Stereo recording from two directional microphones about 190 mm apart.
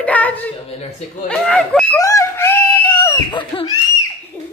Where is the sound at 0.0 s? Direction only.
10° left (ahead or behind).